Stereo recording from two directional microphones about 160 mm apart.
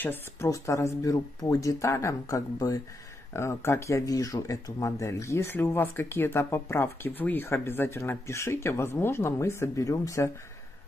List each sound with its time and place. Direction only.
0.0 s speech: 15° left (ahead or behind)